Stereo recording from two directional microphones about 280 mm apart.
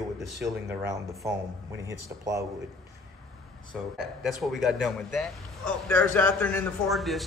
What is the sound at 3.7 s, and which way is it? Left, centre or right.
A man's voice, centre.